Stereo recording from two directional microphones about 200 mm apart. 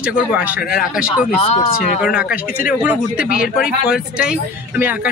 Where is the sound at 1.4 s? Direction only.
30° left (ahead or behind).